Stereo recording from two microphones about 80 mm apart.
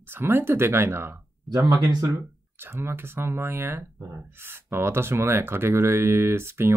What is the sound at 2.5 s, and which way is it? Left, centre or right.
Speech, right.